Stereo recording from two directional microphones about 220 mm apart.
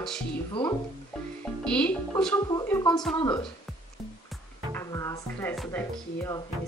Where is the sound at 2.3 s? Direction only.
15° left (ahead or behind).